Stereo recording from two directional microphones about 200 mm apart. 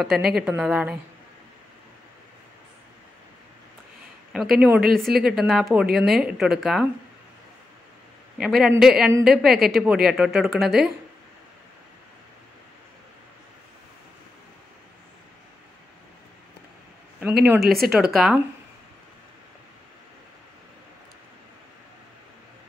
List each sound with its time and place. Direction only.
0.0 s speech: 5° right (ahead or behind)
4.3 s speech: 5° right (ahead or behind)
8.4 s speech: centre (ahead or behind)
17.6 s speech: 50° right (ahead or behind)
17.9 s speech: centre (ahead or behind)